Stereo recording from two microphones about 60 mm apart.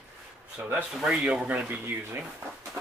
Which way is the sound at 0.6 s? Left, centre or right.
Right.